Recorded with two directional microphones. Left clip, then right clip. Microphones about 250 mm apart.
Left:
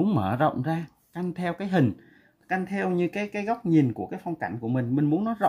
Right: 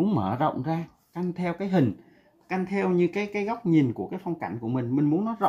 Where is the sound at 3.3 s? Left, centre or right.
Left.